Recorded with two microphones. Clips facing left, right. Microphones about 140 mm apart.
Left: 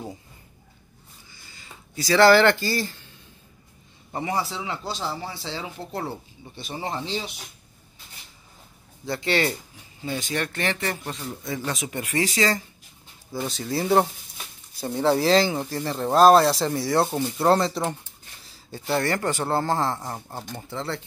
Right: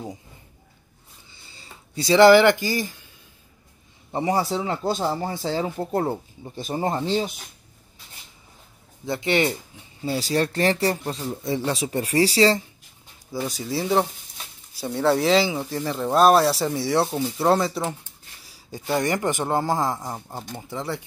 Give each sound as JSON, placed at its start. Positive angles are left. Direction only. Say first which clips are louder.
{"t": 1.3, "sound": "a sound", "louder": "right 1 dB", "side_deg": -30}
{"t": 4.1, "sound": "speech", "louder": "right 5 dB", "side_deg": -35}
{"t": 9.0, "sound": "speech", "louder": "right 2 dB", "side_deg": -20}
{"t": 10.0, "sound": "speech", "louder": "right 5 dB", "side_deg": -35}
{"t": 13.5, "sound": "speech", "louder": "left 2 dB", "side_deg": -5}
{"t": 18.5, "sound": "speech", "louder": "right 1 dB", "side_deg": -15}